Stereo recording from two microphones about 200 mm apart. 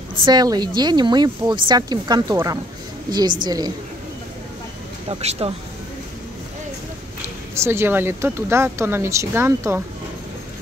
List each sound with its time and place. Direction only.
0.2 s speech: 20° right (ahead or behind)
5.0 s speech: 30° right (ahead or behind)
7.5 s speech: 15° right (ahead or behind)